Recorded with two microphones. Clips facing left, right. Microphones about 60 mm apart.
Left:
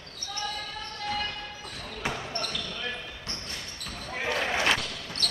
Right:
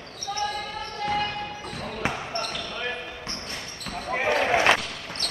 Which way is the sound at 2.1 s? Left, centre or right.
Right.